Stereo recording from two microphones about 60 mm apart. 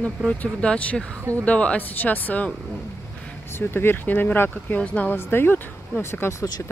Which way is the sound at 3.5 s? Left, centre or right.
Left.